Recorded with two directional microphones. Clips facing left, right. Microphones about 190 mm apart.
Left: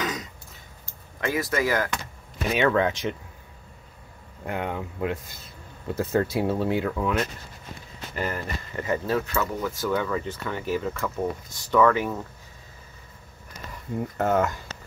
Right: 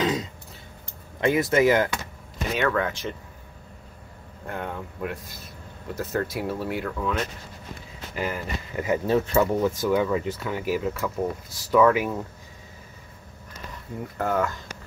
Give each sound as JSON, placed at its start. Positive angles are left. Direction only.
{"t": 0.0, "sound": "throat clearing", "side_deg": -30}
{"t": 1.2, "sound": "speech", "side_deg": -25}
{"t": 2.5, "sound": "speech", "side_deg": 20}
{"t": 4.5, "sound": "speech", "side_deg": 15}
{"t": 8.1, "sound": "speech", "side_deg": -5}
{"t": 14.1, "sound": "speech", "side_deg": 20}